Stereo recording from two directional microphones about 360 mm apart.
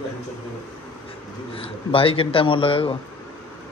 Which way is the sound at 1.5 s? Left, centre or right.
Centre.